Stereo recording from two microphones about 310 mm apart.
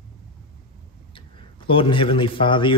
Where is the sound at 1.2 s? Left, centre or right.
Centre.